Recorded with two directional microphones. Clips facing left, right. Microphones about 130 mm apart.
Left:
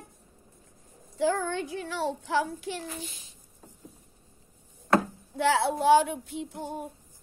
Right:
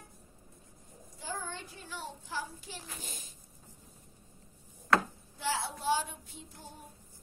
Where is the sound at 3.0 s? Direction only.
45° right (ahead or behind).